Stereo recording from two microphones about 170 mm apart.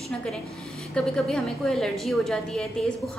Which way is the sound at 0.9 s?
5° left (ahead or behind).